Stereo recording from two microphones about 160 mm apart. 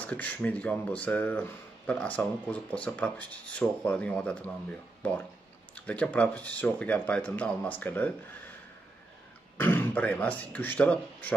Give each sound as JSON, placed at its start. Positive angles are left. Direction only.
{"t": 0.0, "sound": "speech", "side_deg": 10}
{"t": 9.6, "sound": "speech", "side_deg": 15}